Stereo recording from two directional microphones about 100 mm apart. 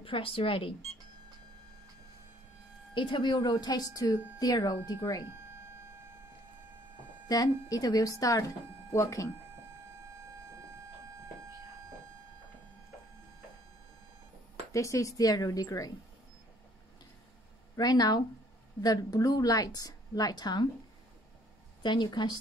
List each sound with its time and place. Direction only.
0.0 s speech: 65° left (ahead or behind)
2.9 s a woman's voice: 55° left (ahead or behind)
7.2 s speech: 40° left (ahead or behind)
14.7 s speech: 30° left (ahead or behind)
17.7 s a woman's voice: 40° left (ahead or behind)
21.8 s a woman's voice: 50° left (ahead or behind)